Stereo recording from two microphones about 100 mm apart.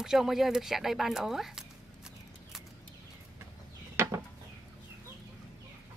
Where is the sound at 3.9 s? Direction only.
25° right (ahead or behind).